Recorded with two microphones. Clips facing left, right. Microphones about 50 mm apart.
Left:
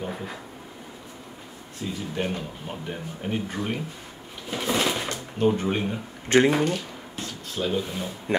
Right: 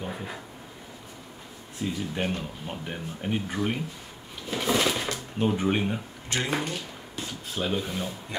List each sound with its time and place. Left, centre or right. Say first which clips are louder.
0.0 s a sound: left 2 dB; centre
1.8 s speech: even; centre
4.5 s a sound: even; centre
5.5 s speech: left 1 dB; centre
6.2 s speech: left 13 dB; left
6.6 s speech: left 7 dB; centre